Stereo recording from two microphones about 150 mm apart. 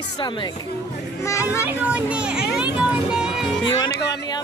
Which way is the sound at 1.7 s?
10° right (ahead or behind).